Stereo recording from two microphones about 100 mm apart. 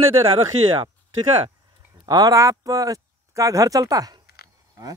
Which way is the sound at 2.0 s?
40° right (ahead or behind).